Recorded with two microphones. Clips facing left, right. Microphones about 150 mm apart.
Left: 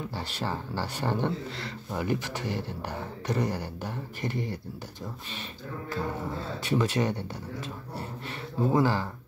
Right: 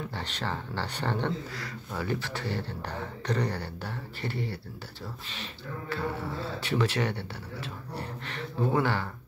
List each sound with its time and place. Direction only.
0.1 s speech: 10° left (ahead or behind)
5.9 s speech: 15° left (ahead or behind)
8.7 s speech: 35° left (ahead or behind)